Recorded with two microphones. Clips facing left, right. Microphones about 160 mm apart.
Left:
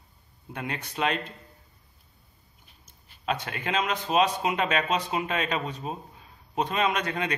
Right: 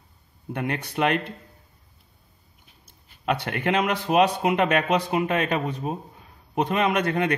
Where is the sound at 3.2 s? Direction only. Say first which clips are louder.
Right 5 dB; 60° right (ahead or behind).